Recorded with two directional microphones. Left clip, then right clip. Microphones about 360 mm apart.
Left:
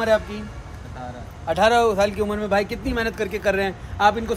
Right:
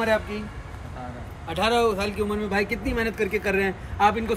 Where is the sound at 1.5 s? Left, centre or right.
Centre.